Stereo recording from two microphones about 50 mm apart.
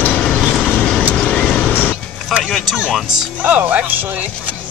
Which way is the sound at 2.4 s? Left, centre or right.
Centre.